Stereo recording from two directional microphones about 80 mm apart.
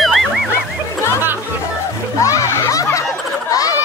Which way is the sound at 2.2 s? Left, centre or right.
Left.